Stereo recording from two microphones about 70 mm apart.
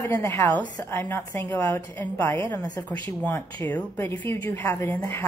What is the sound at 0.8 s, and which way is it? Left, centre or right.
A woman's voice, left.